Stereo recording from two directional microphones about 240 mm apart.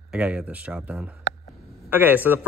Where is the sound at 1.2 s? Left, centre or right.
Left.